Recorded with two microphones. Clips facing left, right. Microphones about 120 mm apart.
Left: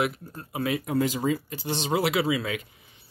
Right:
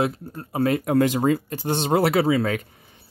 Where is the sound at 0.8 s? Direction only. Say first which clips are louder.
Right 6 dB; 65° right (ahead or behind).